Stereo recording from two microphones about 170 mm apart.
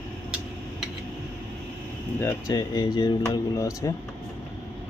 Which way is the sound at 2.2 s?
20° left (ahead or behind).